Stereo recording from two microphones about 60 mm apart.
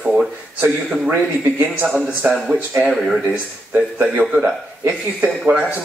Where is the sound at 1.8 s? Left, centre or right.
Centre.